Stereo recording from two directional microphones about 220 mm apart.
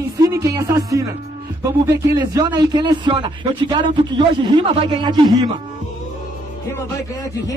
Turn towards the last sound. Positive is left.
turn(degrees=15)  # may be behind; listen again after turning